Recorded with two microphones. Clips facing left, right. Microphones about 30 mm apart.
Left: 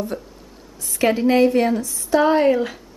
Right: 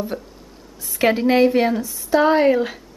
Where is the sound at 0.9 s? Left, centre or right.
Centre.